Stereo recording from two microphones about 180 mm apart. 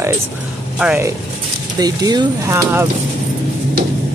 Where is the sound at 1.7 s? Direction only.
20° right (ahead or behind).